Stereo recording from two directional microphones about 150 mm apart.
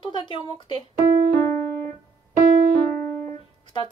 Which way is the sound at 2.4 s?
65° right (ahead or behind).